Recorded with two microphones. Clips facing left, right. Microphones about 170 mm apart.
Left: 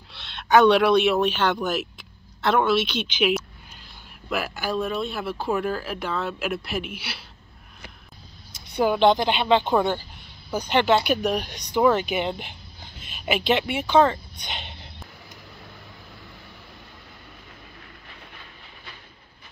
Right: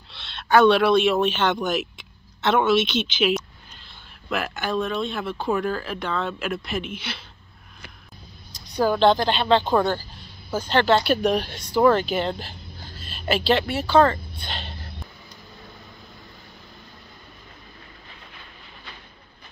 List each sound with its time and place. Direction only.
0.1 s speech: 10° left (ahead or behind)
8.7 s speech: 20° left (ahead or behind)